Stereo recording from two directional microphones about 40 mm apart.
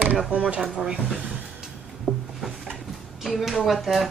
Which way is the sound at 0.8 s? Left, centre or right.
Centre.